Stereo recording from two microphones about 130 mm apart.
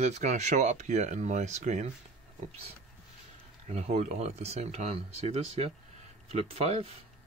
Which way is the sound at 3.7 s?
55° right (ahead or behind).